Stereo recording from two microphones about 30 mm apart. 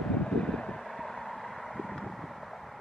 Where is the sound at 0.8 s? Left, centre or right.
Centre.